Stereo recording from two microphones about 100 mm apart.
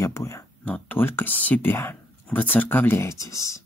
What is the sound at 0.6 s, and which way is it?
Speech, 15° left (ahead or behind).